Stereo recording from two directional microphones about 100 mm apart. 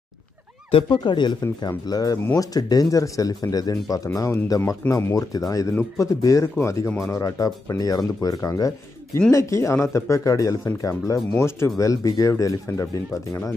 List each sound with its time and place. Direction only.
0.8 s speech: 50° left (ahead or behind); by 13.5 s 30° left (ahead or behind)